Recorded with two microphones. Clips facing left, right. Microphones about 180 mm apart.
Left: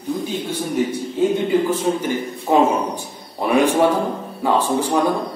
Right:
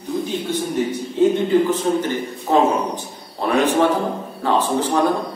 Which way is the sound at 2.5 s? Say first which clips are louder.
Left 1 dB; 15° left (ahead or behind).